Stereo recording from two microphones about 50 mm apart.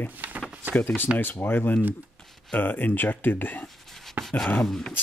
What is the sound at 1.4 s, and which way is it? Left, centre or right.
Speech, left.